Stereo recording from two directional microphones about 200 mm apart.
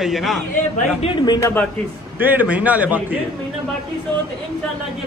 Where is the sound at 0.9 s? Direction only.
30° left (ahead or behind).